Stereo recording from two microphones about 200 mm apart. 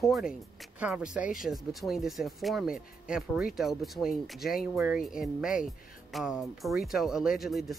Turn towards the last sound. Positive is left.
turn(degrees=0)  # may be behind; listen again after turning